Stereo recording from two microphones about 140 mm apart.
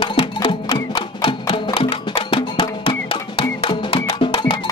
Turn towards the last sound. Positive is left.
turn(degrees=35)  # may be behind; listen again after turning